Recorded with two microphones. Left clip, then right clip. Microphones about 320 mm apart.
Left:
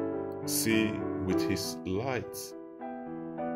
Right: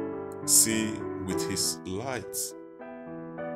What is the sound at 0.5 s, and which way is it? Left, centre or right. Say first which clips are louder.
Speech: right 3 dB; centre.